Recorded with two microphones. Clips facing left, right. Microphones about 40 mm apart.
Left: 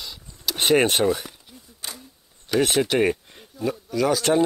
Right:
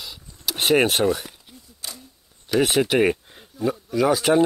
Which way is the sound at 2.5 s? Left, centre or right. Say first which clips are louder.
Right 1 dB; centre.